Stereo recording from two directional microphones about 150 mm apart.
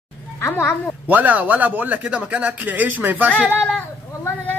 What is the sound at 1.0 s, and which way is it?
A man's voice, 10° right (ahead or behind).